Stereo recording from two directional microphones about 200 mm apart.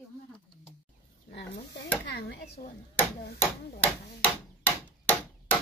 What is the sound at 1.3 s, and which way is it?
Speech, 60° left (ahead or behind).